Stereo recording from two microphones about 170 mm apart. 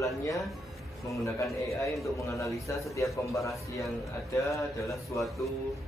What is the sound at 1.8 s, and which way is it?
Speech, centre (ahead or behind).